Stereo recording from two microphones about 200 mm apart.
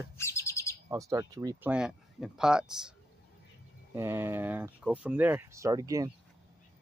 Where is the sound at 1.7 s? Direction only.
5° right (ahead or behind).